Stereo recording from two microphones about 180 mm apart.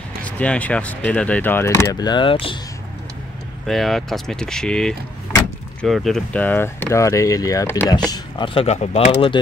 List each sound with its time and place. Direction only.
0.2 s speech: 5° left (ahead or behind); by 2.6 s 30° left (ahead or behind)
3.6 s speech: centre (ahead or behind)
8.1 s speech: 25° left (ahead or behind)
8.6 s speech: 35° left (ahead or behind)